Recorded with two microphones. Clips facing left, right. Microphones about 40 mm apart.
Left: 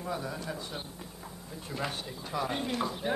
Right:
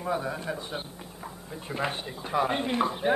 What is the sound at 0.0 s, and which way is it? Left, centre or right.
Speech, right.